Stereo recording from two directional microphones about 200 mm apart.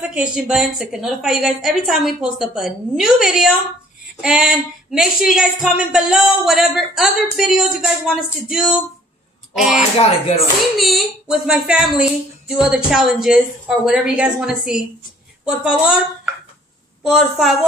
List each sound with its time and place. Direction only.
0.0 s speech: 5° right (ahead or behind)
9.8 s speech: 30° left (ahead or behind)
10.8 s speech: centre (ahead or behind)
17.0 s speech: centre (ahead or behind)